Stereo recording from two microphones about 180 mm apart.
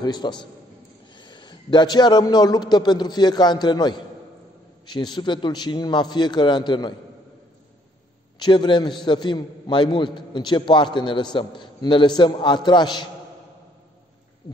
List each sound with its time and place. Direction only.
0.0 s a man's voice: 25° left (ahead or behind)
8.4 s a man's voice: 25° left (ahead or behind)